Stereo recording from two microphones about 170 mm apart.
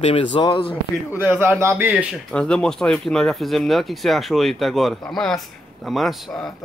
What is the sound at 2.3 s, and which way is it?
Speech, 5° left (ahead or behind).